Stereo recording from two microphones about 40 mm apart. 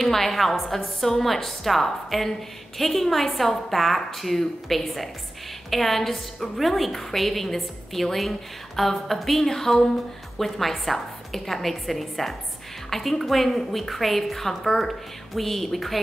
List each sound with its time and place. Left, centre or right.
0.0 s a woman's voice: centre